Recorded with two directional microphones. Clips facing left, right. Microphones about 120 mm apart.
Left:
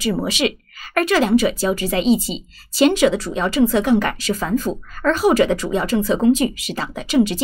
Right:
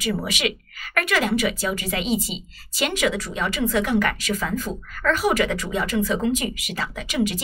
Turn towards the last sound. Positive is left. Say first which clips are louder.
# left 7 dB
turn(degrees=30)  # may be behind; listen again after turning